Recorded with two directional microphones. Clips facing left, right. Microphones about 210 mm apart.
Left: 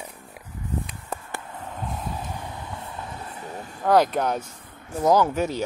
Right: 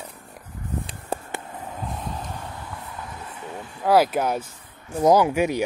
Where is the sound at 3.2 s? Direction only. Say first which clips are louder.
Even; 35° left (ahead or behind).